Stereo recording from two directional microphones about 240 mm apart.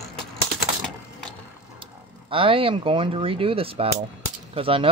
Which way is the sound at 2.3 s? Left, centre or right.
Right.